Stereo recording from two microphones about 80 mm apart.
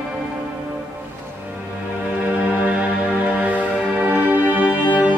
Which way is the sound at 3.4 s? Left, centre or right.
Right.